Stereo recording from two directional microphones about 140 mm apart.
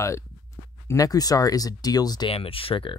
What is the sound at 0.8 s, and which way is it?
Speech, 25° left (ahead or behind).